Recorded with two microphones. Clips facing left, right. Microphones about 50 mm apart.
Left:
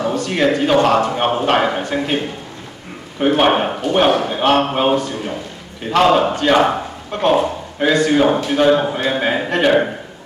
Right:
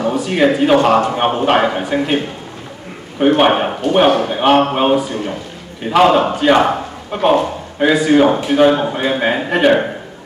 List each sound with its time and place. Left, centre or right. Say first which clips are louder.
0.0 s speech: right 3 dB; centre